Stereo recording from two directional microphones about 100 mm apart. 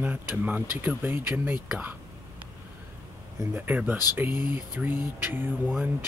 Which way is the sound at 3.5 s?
15° right (ahead or behind).